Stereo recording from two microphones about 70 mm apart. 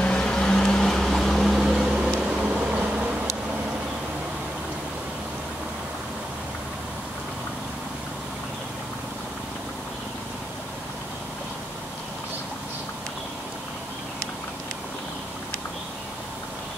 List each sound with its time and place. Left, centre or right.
0.0 s vehicle: centre